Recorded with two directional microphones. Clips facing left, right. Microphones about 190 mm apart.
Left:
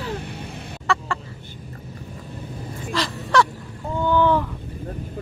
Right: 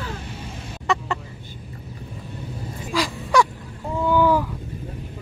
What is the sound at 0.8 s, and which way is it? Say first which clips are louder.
Chicken: right 1 dB; 20° right (ahead or behind).